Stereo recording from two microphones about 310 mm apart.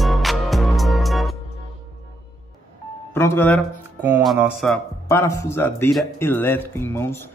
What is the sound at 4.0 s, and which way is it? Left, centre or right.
Speech, centre.